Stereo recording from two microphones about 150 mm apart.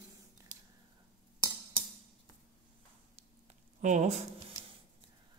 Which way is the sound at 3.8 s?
55° right (ahead or behind).